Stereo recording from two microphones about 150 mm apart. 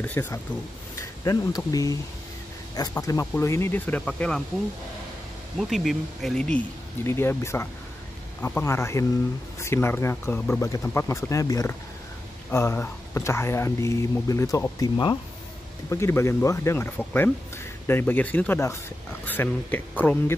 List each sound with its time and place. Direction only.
0.0 s speech: 10° left (ahead or behind)
5.6 s speech: centre (ahead or behind)
7.1 s speech: 15° left (ahead or behind)